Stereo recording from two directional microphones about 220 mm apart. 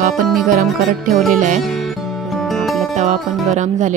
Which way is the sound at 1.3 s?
35° right (ahead or behind).